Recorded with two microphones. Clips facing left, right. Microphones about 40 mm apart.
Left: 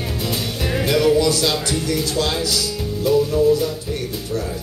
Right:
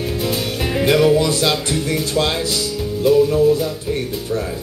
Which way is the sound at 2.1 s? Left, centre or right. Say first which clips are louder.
Right 2 dB; right.